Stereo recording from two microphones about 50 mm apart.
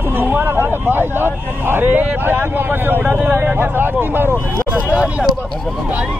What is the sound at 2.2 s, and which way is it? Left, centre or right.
Speech, right.